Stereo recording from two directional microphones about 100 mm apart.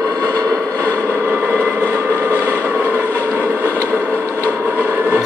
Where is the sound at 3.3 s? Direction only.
20° right (ahead or behind).